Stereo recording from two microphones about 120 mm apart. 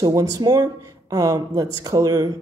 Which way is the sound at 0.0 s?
30° right (ahead or behind).